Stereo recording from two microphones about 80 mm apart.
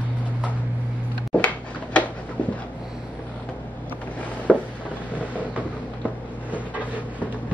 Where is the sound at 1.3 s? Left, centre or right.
Centre.